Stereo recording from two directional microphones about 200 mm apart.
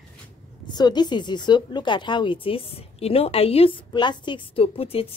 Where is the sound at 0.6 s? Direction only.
20° left (ahead or behind).